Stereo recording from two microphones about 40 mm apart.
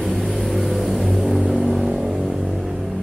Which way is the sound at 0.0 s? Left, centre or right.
Centre.